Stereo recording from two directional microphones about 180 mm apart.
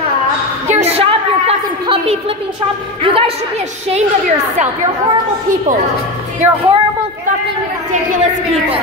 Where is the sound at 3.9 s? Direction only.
40° right (ahead or behind).